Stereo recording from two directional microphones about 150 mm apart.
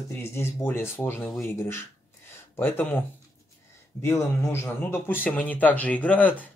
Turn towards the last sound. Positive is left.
turn(degrees=10)  # may be behind; listen again after turning